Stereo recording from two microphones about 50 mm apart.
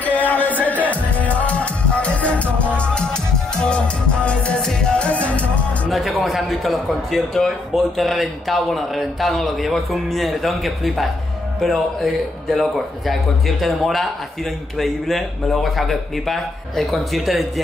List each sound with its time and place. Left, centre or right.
0.0 s music: left
5.9 s music: centre
6.2 s a man's voice: centre